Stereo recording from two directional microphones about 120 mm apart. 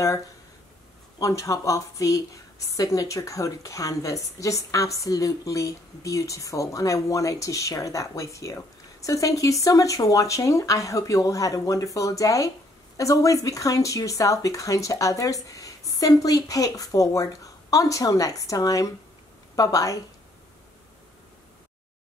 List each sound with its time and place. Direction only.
1.2 s a woman's voice: 25° left (ahead or behind)